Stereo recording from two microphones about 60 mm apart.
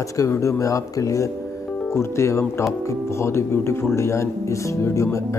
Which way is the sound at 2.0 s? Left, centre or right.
Left.